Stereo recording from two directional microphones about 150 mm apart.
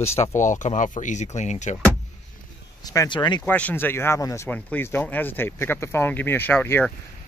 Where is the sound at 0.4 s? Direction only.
55° left (ahead or behind).